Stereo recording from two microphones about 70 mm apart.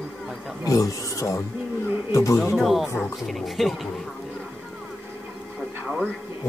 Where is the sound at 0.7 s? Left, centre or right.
Left.